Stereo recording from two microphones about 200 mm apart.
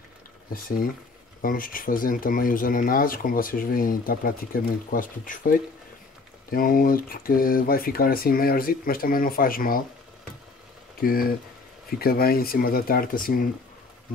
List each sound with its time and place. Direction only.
0.5 s speech: 45° left (ahead or behind)
11.0 s speech: 45° left (ahead or behind)